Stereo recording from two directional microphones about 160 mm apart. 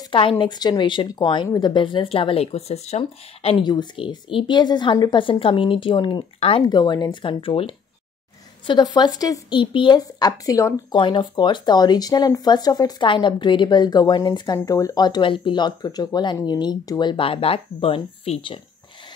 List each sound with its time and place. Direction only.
0.1 s speech: 35° left (ahead or behind)